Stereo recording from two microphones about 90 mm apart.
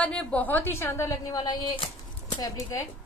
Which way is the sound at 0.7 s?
30° left (ahead or behind).